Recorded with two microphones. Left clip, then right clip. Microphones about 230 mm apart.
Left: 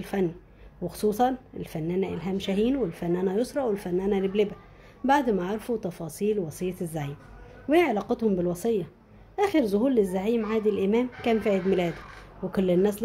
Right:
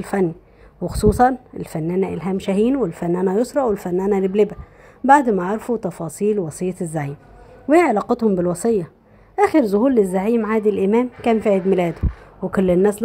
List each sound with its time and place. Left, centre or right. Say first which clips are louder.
0.0 s speech: right 8 dB; centre
5.0 s speech: right 10 dB; centre